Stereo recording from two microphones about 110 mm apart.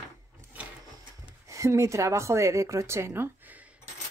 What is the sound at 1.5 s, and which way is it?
Speech, 30° right (ahead or behind).